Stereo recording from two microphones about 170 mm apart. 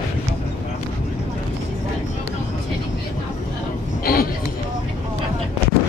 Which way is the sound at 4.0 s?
60° left (ahead or behind).